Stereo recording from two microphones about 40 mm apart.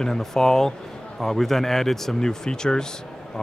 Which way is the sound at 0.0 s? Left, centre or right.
Centre.